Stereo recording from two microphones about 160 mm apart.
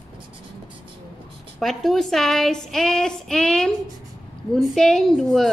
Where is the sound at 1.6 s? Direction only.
Centre (ahead or behind).